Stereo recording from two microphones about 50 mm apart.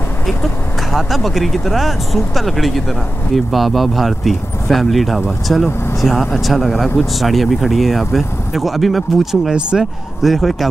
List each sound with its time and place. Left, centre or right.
0.9 s speech: centre
9.5 s speech: centre
10.2 s speech: centre